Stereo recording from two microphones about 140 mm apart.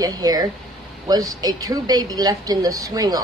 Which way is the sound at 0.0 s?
30° right (ahead or behind).